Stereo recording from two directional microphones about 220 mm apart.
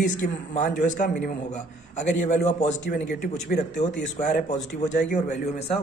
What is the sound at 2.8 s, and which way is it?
Speech, 45° left (ahead or behind).